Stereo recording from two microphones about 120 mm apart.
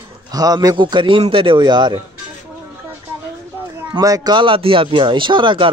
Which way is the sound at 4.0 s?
30° right (ahead or behind).